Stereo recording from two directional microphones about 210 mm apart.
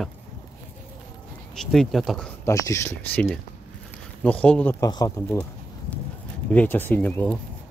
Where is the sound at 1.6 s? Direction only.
Centre (ahead or behind).